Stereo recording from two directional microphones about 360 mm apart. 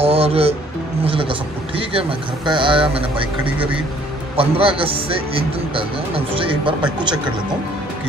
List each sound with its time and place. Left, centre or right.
0.0 s speech: centre
4.4 s speech: centre